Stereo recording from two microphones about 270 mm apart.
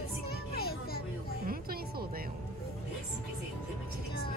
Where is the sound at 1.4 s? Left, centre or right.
Right.